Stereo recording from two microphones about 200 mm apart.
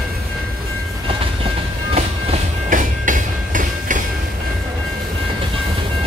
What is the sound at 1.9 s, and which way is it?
Train, 35° right (ahead or behind).